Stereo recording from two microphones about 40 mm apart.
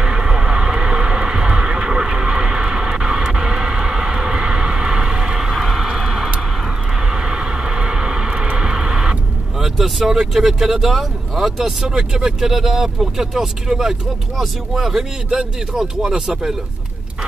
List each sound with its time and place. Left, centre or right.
0.0 s vehicle: centre
7.1 s vehicle: centre
9.6 s speech: centre
11.8 s speech: right
12.2 s speech: centre